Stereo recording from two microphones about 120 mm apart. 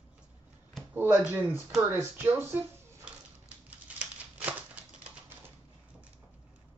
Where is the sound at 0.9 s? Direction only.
15° right (ahead or behind).